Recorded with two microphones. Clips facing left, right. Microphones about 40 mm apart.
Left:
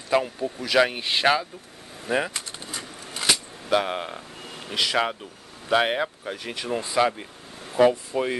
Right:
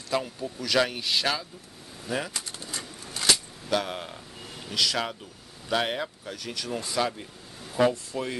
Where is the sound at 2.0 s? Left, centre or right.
Left.